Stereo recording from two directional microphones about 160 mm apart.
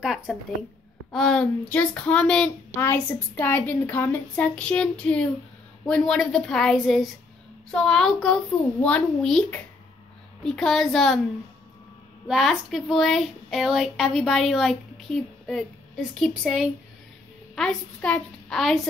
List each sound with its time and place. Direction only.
0.0 s a woman's voice: 5° right (ahead or behind)
12.3 s speech: centre (ahead or behind)